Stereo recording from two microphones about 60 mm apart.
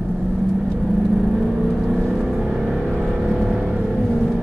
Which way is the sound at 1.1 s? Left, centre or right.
Centre.